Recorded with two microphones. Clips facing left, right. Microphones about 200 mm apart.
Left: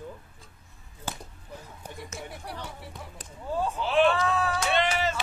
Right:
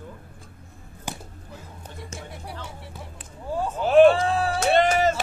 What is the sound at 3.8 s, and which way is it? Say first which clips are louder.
Speech: right 9 dB; 45° right (ahead or behind).